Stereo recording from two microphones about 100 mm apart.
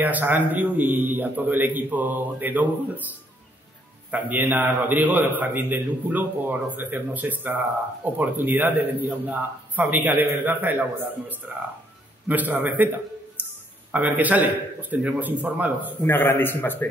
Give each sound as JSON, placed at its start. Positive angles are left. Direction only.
{"t": 0.0, "sound": "a man's voice", "side_deg": -20}
{"t": 4.1, "sound": "a man's voice", "side_deg": -15}
{"t": 13.9, "sound": "a man's voice", "side_deg": -20}
{"t": 16.0, "sound": "a man's voice", "side_deg": 20}